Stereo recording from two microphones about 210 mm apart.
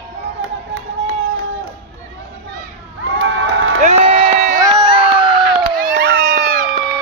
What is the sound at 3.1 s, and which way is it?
Crowd, 70° right (ahead or behind).